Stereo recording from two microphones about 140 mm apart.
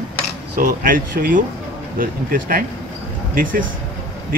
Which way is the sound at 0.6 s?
80° right.